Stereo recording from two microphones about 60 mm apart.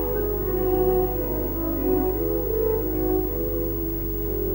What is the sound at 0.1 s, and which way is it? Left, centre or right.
Music, left.